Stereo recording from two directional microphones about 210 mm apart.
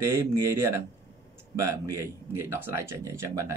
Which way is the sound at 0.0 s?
10° right (ahead or behind).